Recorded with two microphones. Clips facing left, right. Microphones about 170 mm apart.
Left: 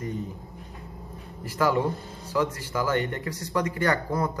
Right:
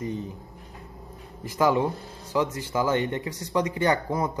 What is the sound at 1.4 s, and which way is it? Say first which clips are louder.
Speech: right 2 dB; 20° right (ahead or behind).